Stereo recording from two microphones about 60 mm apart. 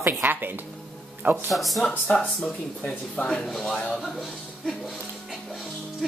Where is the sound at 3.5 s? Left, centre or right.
Centre.